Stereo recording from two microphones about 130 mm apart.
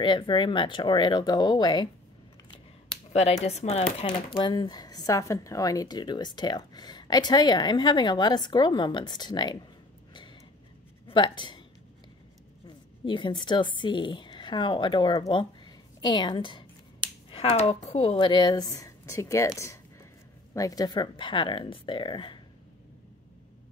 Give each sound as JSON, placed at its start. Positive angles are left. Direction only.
{"t": 0.0, "sound": "speech", "side_deg": 35}
{"t": 3.1, "sound": "speech", "side_deg": 55}
{"t": 4.0, "sound": "speech", "side_deg": 40}
{"t": 11.1, "sound": "speech", "side_deg": 40}
{"t": 12.6, "sound": "speech", "side_deg": 40}
{"t": 18.2, "sound": "speech", "side_deg": 35}